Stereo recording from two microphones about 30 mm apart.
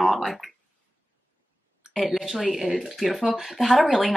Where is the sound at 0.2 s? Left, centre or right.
Centre.